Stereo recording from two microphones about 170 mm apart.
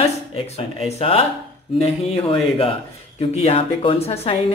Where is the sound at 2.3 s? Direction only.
35° left (ahead or behind).